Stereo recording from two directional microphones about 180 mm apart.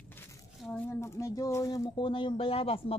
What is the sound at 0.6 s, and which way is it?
A woman's voice, 5° left (ahead or behind).